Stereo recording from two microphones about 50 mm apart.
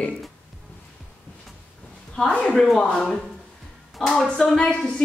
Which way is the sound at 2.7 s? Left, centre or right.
Centre.